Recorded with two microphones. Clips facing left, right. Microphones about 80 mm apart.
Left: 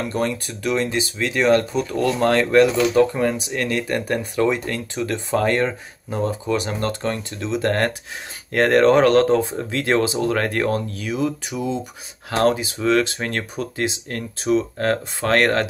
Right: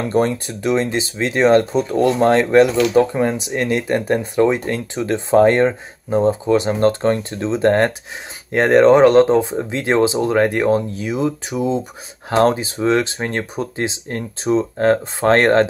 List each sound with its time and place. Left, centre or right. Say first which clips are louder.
0.0 s speech: right 6 dB; right